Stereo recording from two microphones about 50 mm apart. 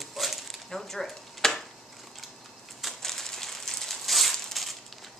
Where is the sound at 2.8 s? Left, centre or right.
Centre.